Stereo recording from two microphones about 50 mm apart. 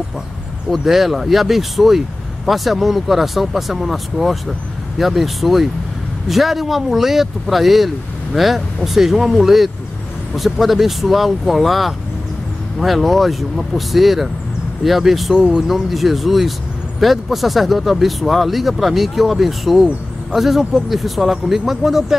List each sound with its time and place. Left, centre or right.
0.7 s speech: centre